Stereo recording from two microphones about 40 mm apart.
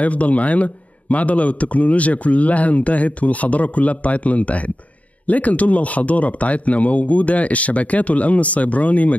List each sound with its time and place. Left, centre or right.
0.0 s a man's voice: left